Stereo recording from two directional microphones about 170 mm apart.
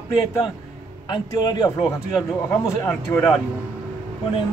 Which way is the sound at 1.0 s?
25° left (ahead or behind).